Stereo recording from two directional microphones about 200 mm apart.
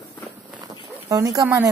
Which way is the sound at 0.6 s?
20° right (ahead or behind).